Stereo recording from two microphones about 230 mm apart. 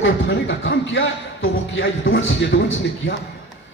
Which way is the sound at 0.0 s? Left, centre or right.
Left.